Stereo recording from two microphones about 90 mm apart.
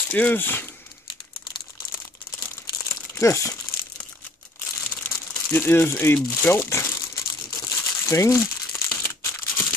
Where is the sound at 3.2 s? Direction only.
35° left (ahead or behind).